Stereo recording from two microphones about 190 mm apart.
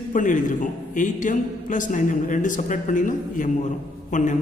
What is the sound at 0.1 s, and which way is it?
A man's voice, 45° left (ahead or behind).